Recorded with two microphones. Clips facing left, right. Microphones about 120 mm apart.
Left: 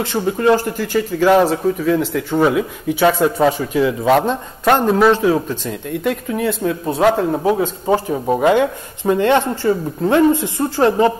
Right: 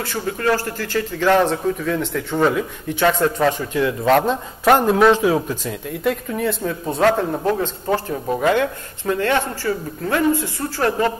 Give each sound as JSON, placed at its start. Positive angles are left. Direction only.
{"t": 0.0, "sound": "speech", "side_deg": 20}